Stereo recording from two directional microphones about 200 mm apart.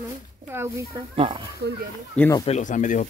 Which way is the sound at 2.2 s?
15° left (ahead or behind).